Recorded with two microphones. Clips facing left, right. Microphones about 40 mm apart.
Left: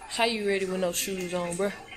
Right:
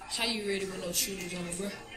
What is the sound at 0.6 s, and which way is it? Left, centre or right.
Speech, left.